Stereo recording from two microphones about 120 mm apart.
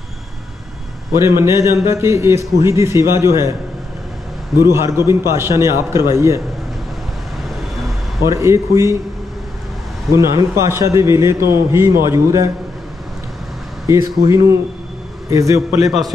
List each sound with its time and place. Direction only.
1.1 s a man's voice: 20° right (ahead or behind)
4.6 s a man's voice: 20° right (ahead or behind)
8.2 s a man's voice: 25° right (ahead or behind)
10.1 s a man's voice: 25° right (ahead or behind)
13.8 s a man's voice: 25° right (ahead or behind)
15.8 s a man's voice: centre (ahead or behind)